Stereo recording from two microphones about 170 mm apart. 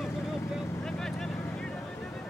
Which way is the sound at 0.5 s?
Centre (ahead or behind).